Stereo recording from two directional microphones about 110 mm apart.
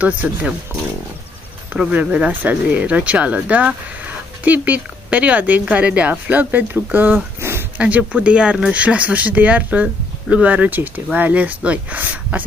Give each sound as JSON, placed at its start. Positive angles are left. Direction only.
{"t": 0.0, "sound": "speech", "side_deg": -15}
{"t": 1.7, "sound": "speech", "side_deg": -15}
{"t": 7.3, "sound": "a sound", "side_deg": -20}
{"t": 7.8, "sound": "speech", "side_deg": -10}